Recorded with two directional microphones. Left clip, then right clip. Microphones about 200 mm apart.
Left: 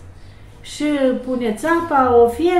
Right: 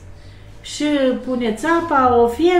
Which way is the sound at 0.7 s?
Centre (ahead or behind).